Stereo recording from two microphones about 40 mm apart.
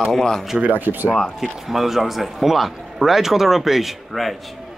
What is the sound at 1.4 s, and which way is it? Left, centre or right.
A man's voice, centre.